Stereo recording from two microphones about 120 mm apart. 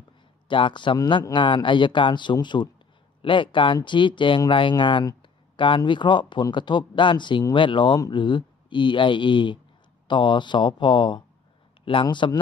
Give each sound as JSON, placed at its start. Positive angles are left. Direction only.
{"t": 0.5, "sound": "speech", "side_deg": 45}